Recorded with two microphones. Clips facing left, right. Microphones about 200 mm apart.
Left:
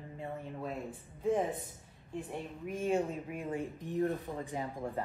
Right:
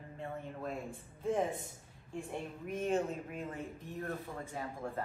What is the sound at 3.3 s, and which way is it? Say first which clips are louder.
Speech: left 4 dB; 15° left (ahead or behind).